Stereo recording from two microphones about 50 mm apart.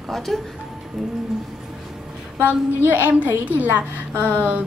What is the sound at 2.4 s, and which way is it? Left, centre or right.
A woman's voice, right.